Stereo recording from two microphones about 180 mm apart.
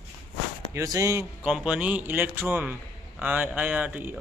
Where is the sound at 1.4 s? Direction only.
5° right (ahead or behind).